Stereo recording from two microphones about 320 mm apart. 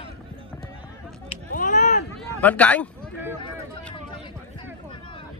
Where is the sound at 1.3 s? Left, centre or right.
Left.